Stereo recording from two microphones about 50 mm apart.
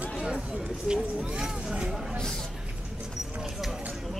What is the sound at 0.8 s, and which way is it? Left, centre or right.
Speech, centre.